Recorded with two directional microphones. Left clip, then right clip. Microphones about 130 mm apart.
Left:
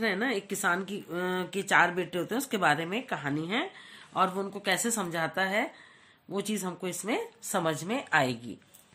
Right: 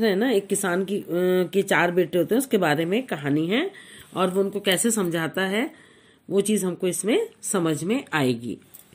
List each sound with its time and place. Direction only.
0.0 s a woman's voice: 20° right (ahead or behind); by 8.4 s centre (ahead or behind)